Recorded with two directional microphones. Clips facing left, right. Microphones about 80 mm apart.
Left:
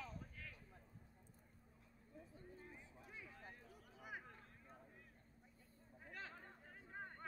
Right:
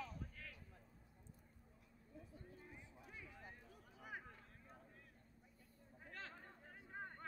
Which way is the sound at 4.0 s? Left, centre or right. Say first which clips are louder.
Even; centre.